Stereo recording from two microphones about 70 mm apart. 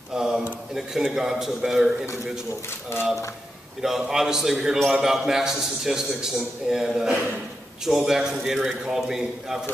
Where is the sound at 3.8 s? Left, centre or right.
Centre.